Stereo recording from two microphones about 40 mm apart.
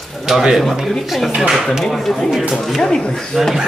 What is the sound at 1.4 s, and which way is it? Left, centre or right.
Speech, centre.